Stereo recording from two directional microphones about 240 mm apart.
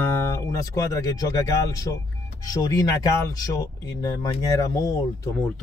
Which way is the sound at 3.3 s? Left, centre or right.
Centre.